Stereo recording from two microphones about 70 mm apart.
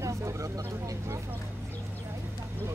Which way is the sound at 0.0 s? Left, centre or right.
Right.